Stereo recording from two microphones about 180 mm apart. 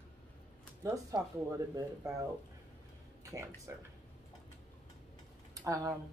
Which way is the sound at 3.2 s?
15° right (ahead or behind).